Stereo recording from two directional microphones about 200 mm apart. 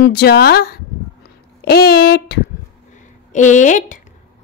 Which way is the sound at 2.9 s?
40° left (ahead or behind).